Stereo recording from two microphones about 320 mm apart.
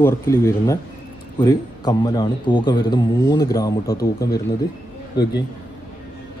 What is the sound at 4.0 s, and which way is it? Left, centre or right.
Speech, left.